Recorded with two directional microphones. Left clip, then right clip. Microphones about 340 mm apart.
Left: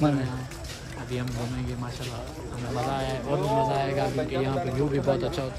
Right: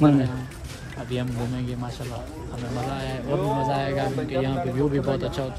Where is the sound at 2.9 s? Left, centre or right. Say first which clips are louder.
Right 2 dB; centre.